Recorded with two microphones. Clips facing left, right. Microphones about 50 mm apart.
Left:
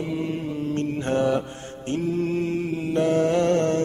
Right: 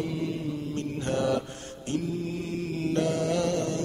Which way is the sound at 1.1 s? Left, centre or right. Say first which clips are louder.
Left 4 dB; left.